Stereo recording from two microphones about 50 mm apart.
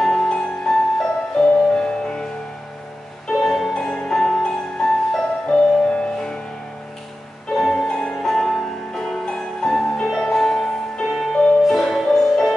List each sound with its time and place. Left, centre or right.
0.0 s music: centre
3.3 s music: centre
3.7 s music: centre
7.5 s music: centre